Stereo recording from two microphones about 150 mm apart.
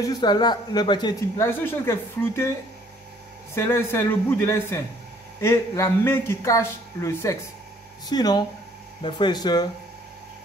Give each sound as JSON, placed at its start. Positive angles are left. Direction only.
{"t": 0.0, "sound": "speech", "side_deg": 30}
{"t": 1.4, "sound": "speech", "side_deg": 15}
{"t": 3.5, "sound": "speech", "side_deg": 20}